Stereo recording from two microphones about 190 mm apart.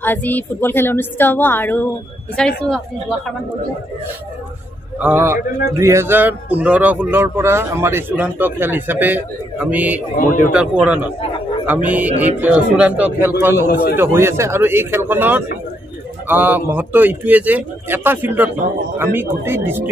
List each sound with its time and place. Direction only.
0.0 s a woman's voice: 10° left (ahead or behind)
4.9 s speech: 10° right (ahead or behind)
10.1 s speech: 45° left (ahead or behind)
10.5 s a man's voice: 5° right (ahead or behind)